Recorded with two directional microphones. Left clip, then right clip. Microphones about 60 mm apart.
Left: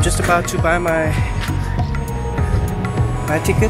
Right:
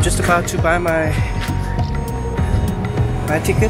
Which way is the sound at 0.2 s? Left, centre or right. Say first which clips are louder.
Even; centre.